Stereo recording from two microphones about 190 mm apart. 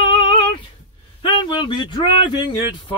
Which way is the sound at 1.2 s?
25° left (ahead or behind).